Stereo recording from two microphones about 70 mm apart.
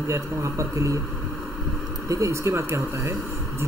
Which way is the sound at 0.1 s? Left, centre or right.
Right.